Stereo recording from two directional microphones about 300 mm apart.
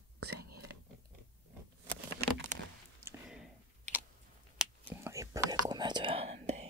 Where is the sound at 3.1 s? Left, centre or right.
Centre.